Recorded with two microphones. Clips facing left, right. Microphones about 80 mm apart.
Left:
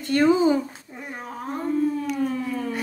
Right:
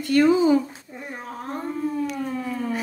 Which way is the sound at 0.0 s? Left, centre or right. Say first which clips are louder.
Right 1 dB; left.